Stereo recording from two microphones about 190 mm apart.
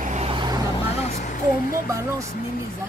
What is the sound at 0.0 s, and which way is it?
Vehicle, 35° right (ahead or behind).